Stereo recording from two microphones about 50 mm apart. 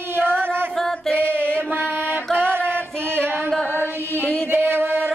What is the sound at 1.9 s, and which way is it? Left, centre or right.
Music, right.